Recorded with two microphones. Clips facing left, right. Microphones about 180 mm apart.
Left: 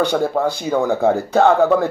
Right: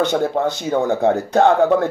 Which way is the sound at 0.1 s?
20° right (ahead or behind).